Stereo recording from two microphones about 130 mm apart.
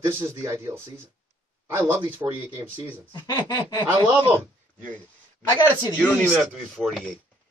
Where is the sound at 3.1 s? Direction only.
35° left (ahead or behind).